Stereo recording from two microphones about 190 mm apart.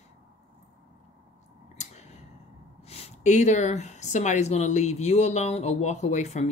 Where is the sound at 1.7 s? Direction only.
35° left (ahead or behind).